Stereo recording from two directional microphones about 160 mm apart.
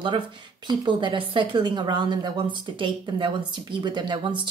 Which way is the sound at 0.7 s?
30° right (ahead or behind).